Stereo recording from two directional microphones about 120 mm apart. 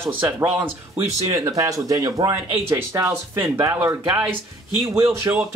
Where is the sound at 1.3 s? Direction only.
30° right (ahead or behind).